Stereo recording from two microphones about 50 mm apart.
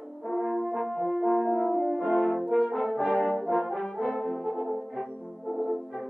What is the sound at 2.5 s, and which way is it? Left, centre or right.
Brass instrument, centre.